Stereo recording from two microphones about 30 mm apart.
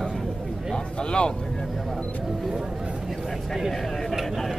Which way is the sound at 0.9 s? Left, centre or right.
Left.